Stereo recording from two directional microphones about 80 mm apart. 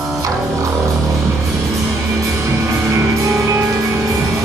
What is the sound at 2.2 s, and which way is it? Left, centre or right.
Music, right.